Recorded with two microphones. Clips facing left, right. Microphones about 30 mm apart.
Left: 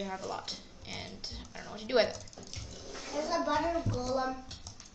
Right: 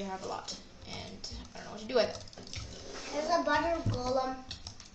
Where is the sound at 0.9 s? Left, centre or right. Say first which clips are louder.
Left 2 dB; left.